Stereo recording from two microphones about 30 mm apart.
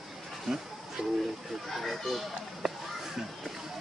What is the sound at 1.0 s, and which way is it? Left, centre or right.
Speech, centre.